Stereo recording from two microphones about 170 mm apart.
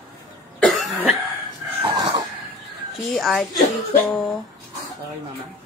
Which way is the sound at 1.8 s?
25° right (ahead or behind).